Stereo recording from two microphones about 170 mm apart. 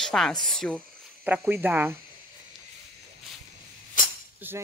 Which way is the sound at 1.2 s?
10° right (ahead or behind).